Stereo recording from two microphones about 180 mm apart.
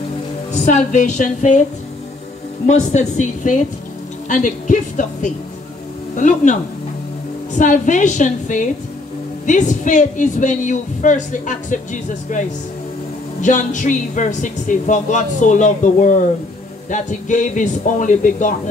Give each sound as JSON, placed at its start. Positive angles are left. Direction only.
{"t": 0.6, "sound": "speech", "side_deg": 40}
{"t": 2.6, "sound": "speech", "side_deg": 40}